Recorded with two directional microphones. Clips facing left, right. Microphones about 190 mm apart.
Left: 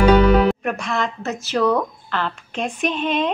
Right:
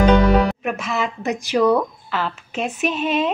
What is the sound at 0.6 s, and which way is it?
Speech, centre (ahead or behind).